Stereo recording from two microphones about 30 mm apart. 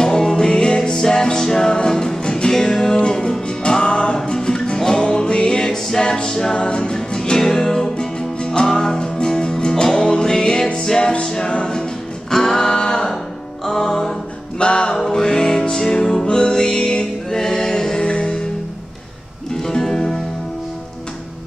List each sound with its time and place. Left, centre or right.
0.0 s music: centre
2.5 s music: centre
2.9 s music: left
5.0 s music: left
5.9 s a capella: left
6.3 s music: left
12.3 s a sound: centre
14.6 s music: left
15.0 s music: centre
16.3 s music: left
19.5 s music: centre